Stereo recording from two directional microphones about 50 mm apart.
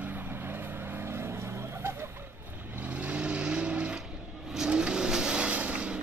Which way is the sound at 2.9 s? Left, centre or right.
Right.